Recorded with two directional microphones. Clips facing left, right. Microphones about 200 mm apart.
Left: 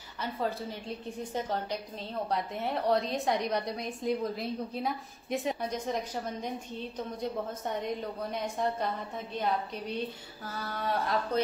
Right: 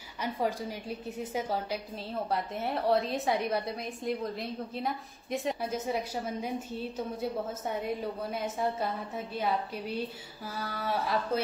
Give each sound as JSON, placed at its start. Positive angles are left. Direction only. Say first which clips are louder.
{"t": 0.2, "sound": "a woman's voice", "louder": "right 2 dB", "side_deg": -15}